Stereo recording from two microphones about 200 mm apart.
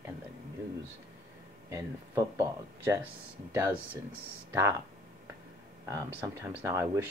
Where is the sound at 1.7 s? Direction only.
15° right (ahead or behind).